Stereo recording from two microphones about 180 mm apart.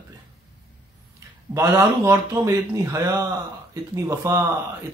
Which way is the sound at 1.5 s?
15° right (ahead or behind).